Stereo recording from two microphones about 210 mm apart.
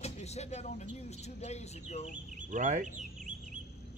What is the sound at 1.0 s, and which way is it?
Speech, 30° left (ahead or behind).